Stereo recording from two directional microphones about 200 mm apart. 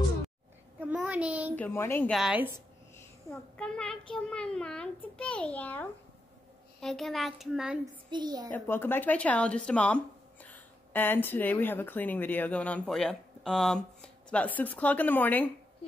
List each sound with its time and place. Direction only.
0.7 s a sound: 10° right (ahead or behind)
1.6 s speech: 10° left (ahead or behind)
2.1 s a child's voice: 5° right (ahead or behind)
8.1 s a child's voice: 20° right (ahead or behind)
8.5 s speech: 10° left (ahead or behind)